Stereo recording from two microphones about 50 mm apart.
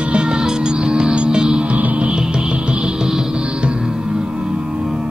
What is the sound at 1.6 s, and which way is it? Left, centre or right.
Music, right.